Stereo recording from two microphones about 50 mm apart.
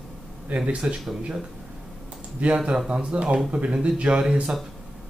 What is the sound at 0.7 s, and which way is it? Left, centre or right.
Speech, right.